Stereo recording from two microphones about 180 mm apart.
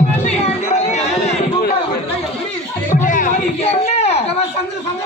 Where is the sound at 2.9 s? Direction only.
45° left (ahead or behind).